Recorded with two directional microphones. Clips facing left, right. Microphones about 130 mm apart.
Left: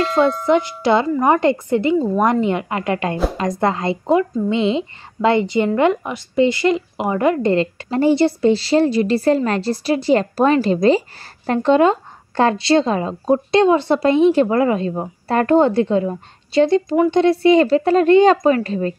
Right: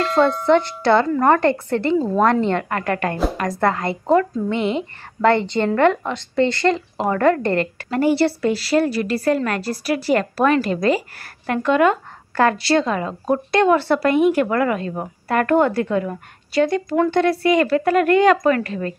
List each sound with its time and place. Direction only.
0.0 s speech: 5° left (ahead or behind); by 18.9 s 25° left (ahead or behind)